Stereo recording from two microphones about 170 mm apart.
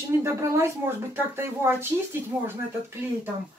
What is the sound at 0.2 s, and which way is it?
Speech, 15° right (ahead or behind).